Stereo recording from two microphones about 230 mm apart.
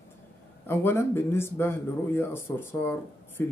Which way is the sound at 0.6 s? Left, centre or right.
Centre.